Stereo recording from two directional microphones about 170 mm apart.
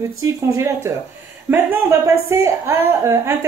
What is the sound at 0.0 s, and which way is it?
A woman's voice, 20° right (ahead or behind).